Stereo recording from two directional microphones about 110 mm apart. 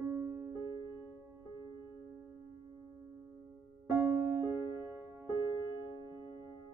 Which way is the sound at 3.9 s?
20° right (ahead or behind).